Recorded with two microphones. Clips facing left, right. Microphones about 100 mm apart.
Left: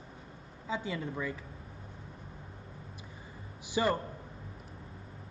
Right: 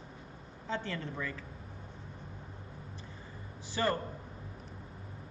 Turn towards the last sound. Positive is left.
turn(degrees=15)  # may be behind; listen again after turning